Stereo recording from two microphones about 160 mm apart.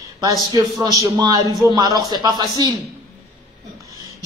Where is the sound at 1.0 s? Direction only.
25° right (ahead or behind).